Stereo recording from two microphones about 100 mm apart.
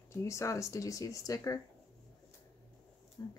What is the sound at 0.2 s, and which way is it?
Speech, 30° left (ahead or behind).